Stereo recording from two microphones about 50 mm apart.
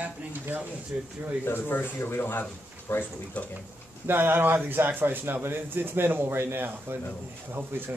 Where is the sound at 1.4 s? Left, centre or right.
Left.